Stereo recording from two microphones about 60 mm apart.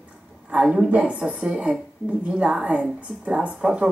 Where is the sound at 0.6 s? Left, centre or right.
Centre.